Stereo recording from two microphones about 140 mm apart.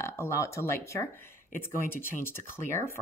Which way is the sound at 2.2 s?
15° left (ahead or behind).